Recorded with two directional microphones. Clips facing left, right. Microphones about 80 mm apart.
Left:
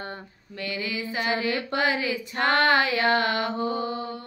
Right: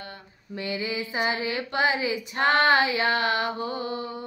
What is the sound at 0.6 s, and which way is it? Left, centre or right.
Female singing, right.